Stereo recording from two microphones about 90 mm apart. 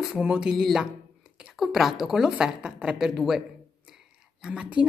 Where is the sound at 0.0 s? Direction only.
10° right (ahead or behind).